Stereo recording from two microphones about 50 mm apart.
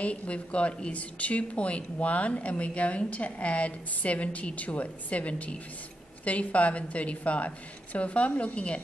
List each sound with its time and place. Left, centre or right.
0.0 s a woman's voice: left